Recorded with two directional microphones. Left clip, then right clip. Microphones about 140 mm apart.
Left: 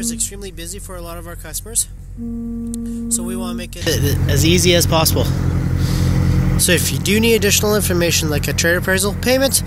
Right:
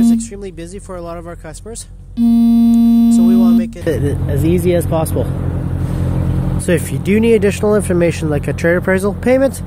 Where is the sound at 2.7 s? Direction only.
50° right (ahead or behind).